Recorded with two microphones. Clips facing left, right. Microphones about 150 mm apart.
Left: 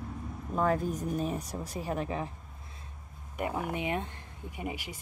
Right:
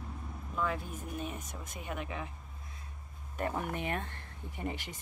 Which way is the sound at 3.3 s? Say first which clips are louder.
Left 2 dB; 10° left (ahead or behind).